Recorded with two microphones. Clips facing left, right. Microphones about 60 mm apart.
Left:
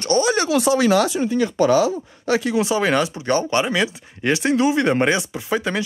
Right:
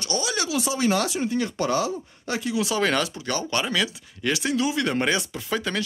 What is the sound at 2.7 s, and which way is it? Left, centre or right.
Speech, centre.